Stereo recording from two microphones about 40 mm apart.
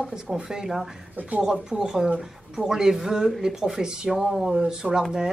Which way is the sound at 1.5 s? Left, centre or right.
Centre.